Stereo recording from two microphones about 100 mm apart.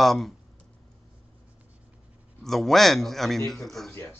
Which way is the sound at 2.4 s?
Centre (ahead or behind).